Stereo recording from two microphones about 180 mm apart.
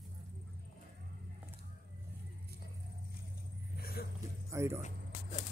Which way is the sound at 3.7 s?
60° left (ahead or behind).